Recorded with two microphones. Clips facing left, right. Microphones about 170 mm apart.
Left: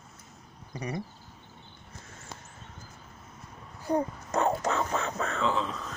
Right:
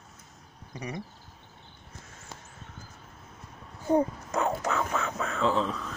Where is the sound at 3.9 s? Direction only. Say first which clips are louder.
Right 4 dB; 25° right (ahead or behind).